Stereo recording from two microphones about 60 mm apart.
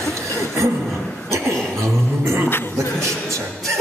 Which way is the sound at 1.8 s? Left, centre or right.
Right.